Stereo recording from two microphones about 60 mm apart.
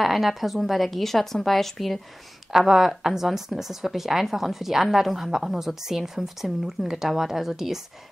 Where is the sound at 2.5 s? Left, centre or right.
Centre.